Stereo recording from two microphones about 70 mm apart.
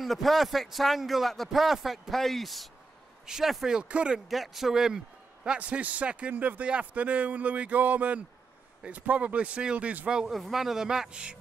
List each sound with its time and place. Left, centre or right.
0.0 s a man's voice: centre
4.3 s a man's voice: centre
10.3 s a man's voice: centre